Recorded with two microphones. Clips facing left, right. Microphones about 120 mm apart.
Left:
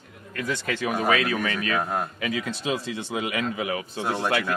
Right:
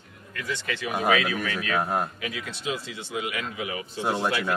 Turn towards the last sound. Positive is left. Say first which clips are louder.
# left 1 dB
turn(degrees=-5)  # may be behind; listen again after turning